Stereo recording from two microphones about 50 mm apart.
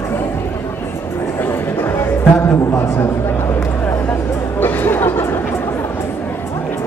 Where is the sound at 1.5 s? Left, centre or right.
Left.